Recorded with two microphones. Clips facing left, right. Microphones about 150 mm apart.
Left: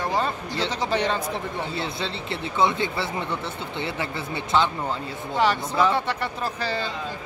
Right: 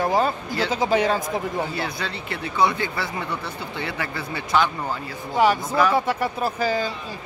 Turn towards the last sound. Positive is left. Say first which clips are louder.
# right 5 dB
turn(degrees=-10)  # may be behind; listen again after turning